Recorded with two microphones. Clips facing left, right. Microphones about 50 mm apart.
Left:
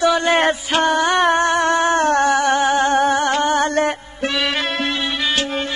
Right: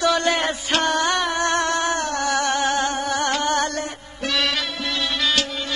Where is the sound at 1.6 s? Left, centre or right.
Left.